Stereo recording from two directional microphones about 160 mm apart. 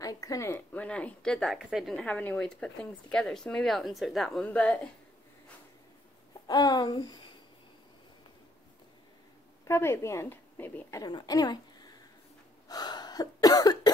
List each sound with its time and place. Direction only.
0.0 s a woman's voice: 20° left (ahead or behind)
6.4 s speech: 25° left (ahead or behind)
9.7 s a woman's voice: 15° left (ahead or behind)
12.6 s cough: 25° left (ahead or behind)